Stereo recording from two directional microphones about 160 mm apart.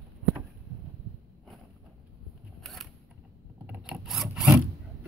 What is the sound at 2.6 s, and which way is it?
Single-lens reflex camera, centre (ahead or behind).